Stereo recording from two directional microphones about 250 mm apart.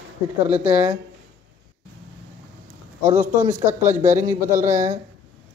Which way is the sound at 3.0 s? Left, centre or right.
Right.